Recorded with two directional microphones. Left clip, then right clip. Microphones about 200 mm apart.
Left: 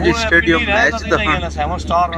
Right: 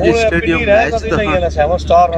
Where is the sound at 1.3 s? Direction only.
45° right (ahead or behind).